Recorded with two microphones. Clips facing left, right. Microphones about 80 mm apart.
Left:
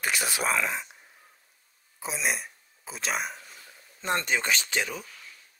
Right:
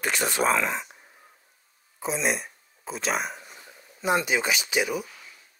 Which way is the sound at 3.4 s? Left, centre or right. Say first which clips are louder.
Right 3 dB; centre.